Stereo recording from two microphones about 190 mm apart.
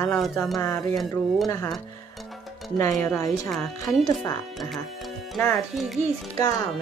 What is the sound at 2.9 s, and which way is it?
Speech, 10° left (ahead or behind).